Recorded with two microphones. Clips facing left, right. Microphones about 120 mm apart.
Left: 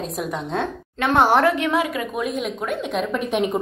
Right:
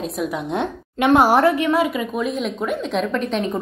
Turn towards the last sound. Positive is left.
turn(degrees=10)  # may be behind; listen again after turning